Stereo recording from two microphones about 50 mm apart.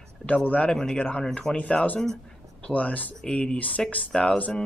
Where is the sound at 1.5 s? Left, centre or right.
Left.